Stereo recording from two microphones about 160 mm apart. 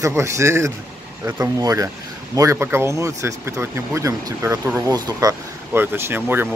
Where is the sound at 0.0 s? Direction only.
15° right (ahead or behind).